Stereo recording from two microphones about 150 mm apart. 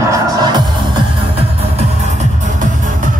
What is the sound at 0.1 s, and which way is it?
Music, 25° right (ahead or behind).